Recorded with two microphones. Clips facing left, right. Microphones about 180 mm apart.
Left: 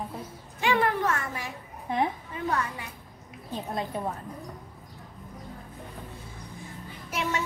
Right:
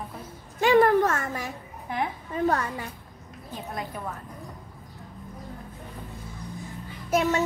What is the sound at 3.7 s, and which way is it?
Speech, 25° left (ahead or behind).